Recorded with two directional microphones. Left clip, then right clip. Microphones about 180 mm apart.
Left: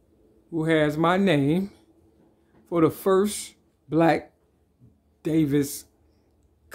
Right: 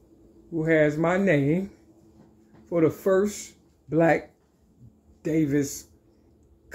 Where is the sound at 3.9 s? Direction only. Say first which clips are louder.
Even; 25° left (ahead or behind).